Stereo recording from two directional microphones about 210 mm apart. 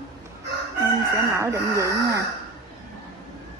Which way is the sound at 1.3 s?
15° right (ahead or behind).